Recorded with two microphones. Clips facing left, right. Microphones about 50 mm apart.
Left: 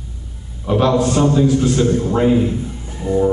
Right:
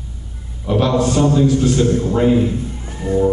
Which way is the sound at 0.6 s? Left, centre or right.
Centre.